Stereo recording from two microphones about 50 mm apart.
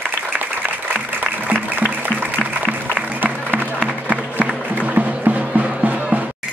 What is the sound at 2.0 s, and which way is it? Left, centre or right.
Music, right.